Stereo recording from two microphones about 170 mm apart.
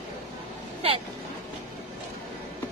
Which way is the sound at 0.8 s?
35° right (ahead or behind).